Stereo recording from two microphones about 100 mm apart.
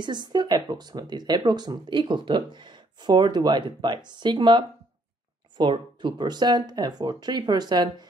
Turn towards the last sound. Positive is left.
turn(degrees=-45)  # may be behind; listen again after turning